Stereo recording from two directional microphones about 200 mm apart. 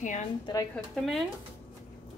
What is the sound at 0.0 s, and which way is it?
Speech, 40° left (ahead or behind).